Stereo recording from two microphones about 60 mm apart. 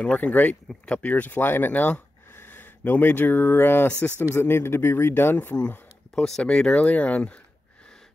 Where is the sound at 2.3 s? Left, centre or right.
Left.